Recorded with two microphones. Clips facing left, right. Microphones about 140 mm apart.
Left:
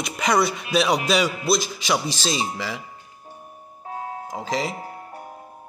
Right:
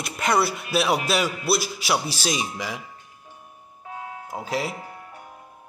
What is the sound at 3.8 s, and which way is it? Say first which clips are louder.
Music: left 4 dB; 40° left (ahead or behind).